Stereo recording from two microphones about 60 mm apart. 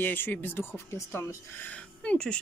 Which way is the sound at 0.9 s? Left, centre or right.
Left.